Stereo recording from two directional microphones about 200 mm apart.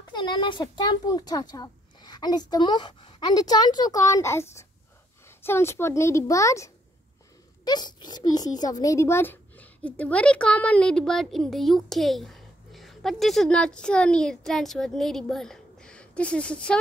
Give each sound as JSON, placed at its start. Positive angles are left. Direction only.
{"t": 0.0, "sound": "a child's voice", "side_deg": 20}